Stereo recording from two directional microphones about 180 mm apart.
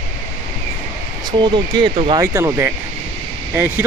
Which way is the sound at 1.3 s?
25° right (ahead or behind).